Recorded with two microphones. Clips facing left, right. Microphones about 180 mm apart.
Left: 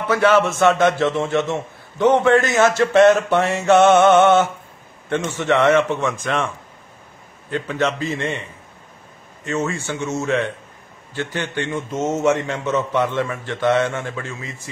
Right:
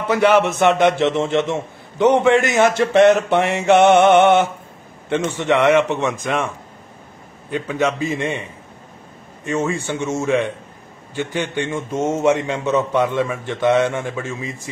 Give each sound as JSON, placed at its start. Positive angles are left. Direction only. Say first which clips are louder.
{"t": 0.1, "sound": "a man's voice", "louder": "right 1 dB", "side_deg": -20}
{"t": 7.5, "sound": "a man's voice", "louder": "right 1 dB", "side_deg": -10}